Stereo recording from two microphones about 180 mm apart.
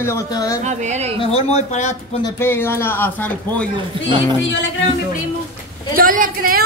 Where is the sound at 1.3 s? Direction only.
40° left (ahead or behind).